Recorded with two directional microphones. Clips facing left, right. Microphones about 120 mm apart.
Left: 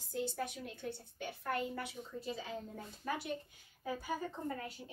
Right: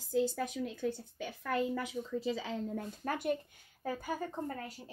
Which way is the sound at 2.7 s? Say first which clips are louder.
Right 4 dB; 50° right (ahead or behind).